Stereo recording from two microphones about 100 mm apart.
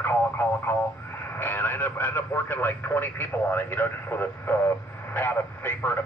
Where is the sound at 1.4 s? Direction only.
20° left (ahead or behind).